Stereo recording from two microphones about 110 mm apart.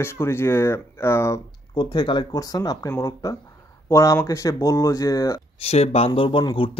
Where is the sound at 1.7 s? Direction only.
45° left (ahead or behind).